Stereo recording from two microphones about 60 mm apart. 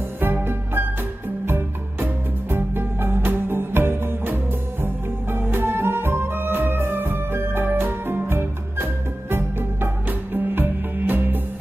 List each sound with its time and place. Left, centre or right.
0.2 s music: right